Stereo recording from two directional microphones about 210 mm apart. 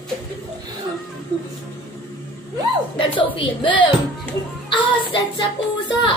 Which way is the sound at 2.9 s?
25° left (ahead or behind).